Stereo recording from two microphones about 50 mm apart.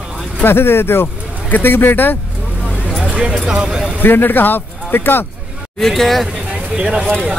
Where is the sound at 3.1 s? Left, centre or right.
Centre.